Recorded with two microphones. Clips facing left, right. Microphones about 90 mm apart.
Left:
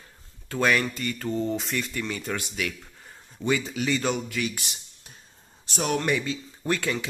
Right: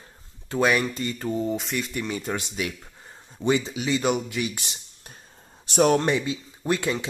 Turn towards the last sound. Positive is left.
turn(degrees=-20)  # may be behind; listen again after turning